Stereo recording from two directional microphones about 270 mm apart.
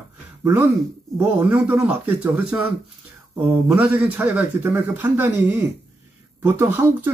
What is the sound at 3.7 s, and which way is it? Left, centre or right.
Speech, centre.